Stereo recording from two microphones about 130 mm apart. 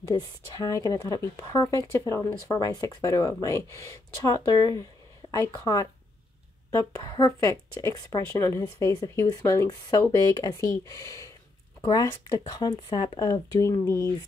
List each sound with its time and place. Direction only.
0.1 s speech: 30° left (ahead or behind)
6.7 s speech: 25° left (ahead or behind)